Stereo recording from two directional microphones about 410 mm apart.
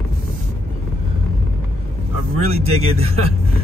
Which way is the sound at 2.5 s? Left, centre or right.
Centre.